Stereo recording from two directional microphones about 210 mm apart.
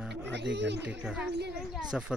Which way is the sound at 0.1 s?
55° right (ahead or behind).